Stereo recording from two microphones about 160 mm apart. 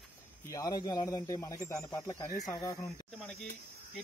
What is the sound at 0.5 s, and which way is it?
Speech, 20° left (ahead or behind).